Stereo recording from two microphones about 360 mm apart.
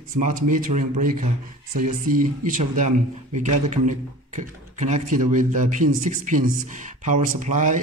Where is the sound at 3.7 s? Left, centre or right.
Centre.